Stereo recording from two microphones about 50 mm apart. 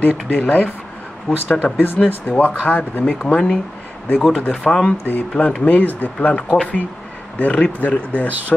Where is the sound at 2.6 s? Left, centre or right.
Left.